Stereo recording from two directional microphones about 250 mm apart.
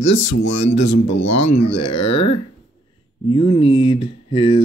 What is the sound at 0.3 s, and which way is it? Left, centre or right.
Speech, left.